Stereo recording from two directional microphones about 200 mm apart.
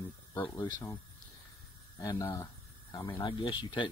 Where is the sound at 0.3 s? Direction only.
10° left (ahead or behind).